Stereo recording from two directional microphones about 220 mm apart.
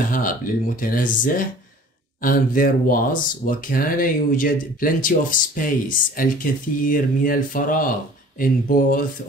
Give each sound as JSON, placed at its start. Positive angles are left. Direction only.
{"t": 0.7, "sound": "speech", "side_deg": 40}